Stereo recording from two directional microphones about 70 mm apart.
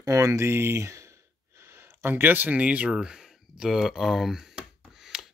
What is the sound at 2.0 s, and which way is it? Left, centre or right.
Speech, right.